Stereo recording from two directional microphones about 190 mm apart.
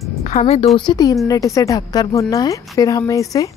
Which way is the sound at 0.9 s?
20° left (ahead or behind).